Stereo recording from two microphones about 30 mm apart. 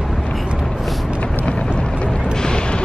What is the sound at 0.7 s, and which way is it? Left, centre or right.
Vehicle, centre.